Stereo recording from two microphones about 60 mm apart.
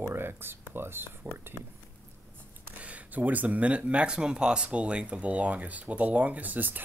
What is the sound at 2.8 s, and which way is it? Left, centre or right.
Speech, right.